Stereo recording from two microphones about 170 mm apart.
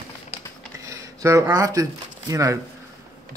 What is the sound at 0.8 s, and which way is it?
Speech, 20° right (ahead or behind).